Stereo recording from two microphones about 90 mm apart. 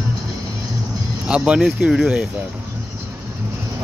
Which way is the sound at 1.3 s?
10° right (ahead or behind).